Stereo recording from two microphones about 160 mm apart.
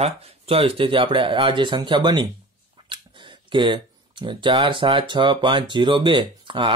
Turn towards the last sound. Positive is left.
turn(degrees=-30)  # may be behind; listen again after turning